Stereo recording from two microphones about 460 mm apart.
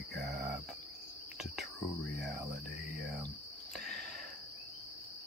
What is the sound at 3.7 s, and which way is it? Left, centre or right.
Cricket, centre.